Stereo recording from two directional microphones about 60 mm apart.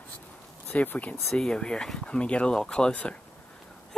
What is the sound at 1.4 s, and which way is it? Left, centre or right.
Speech, centre.